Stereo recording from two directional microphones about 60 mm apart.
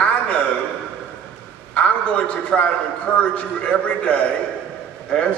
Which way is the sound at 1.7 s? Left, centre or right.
Centre.